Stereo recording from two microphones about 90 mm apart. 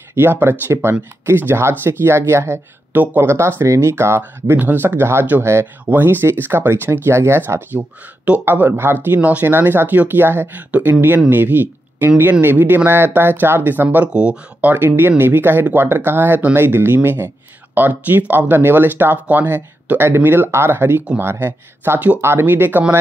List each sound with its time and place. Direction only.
0.1 s speech: 25° right (ahead or behind)
4.2 s speech: 20° right (ahead or behind)